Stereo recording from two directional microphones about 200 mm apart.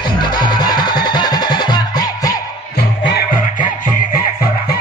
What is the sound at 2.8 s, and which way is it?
Music, 55° left (ahead or behind).